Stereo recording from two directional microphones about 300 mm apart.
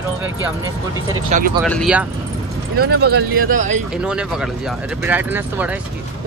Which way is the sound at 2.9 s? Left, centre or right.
Right.